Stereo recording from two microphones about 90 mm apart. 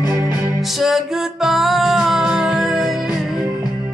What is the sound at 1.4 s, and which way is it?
Music, centre (ahead or behind).